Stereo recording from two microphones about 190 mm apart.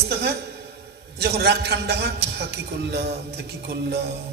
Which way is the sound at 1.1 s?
60° right (ahead or behind).